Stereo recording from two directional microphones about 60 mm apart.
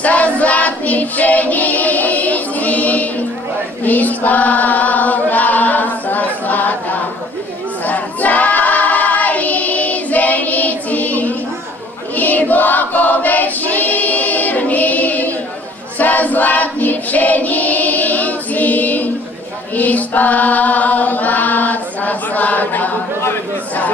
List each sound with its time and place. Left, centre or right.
0.0 s child singing: left
3.8 s choir: left
19.7 s chant: left